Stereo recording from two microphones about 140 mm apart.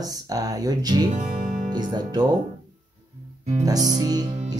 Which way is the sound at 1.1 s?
60° right (ahead or behind).